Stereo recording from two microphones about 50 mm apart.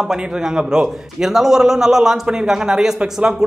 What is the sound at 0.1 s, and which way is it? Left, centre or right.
A man's voice, centre.